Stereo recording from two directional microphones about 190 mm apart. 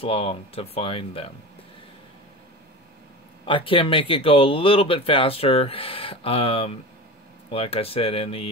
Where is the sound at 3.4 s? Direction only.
25° left (ahead or behind).